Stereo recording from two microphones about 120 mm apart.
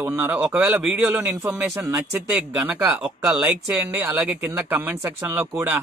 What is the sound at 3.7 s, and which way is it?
Speech, 20° right (ahead or behind).